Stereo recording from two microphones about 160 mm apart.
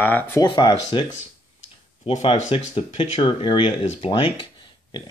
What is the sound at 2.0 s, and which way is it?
Speech, 40° left (ahead or behind).